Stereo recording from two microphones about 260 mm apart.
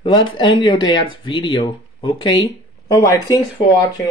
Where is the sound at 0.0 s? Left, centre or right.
Centre.